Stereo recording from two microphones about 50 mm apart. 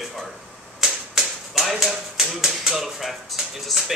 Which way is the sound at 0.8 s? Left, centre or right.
Centre.